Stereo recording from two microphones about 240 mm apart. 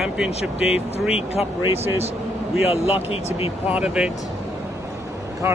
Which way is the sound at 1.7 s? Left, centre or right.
Centre.